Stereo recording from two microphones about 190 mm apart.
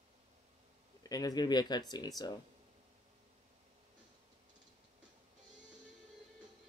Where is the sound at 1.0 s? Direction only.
20° left (ahead or behind).